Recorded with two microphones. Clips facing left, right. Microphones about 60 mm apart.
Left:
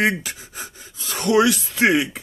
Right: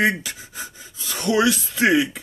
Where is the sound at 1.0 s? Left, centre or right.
Left.